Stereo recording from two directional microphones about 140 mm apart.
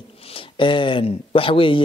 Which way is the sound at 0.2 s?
40° left (ahead or behind).